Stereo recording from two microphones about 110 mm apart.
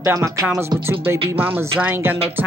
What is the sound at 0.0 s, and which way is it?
Speech, 30° right (ahead or behind).